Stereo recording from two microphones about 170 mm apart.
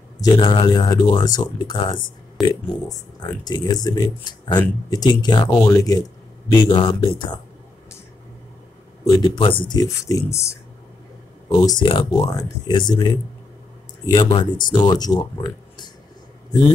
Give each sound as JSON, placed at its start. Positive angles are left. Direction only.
{"t": 0.2, "sound": "speech", "side_deg": 25}
{"t": 6.7, "sound": "speech", "side_deg": 30}
{"t": 9.0, "sound": "speech", "side_deg": 20}
{"t": 11.4, "sound": "speech", "side_deg": 20}